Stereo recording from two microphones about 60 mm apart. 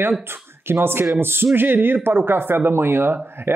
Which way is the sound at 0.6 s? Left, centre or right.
Right.